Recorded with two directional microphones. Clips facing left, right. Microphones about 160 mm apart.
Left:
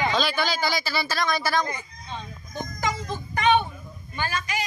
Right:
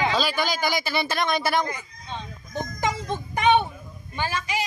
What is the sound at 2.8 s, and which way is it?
Music, 25° right (ahead or behind).